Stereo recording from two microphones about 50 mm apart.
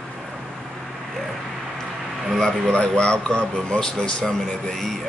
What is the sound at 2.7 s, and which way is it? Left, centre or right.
Speech, centre.